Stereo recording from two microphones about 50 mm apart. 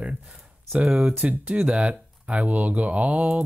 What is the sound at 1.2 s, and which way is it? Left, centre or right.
Speech, right.